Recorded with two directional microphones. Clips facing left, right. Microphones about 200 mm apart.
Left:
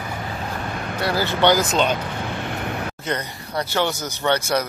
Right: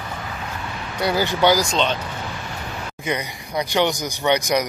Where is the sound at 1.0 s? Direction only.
15° right (ahead or behind).